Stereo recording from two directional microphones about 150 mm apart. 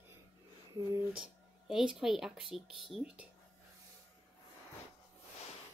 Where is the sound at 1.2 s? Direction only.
5° right (ahead or behind).